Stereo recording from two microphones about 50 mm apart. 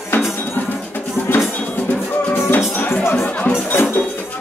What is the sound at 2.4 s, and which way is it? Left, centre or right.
Music, left.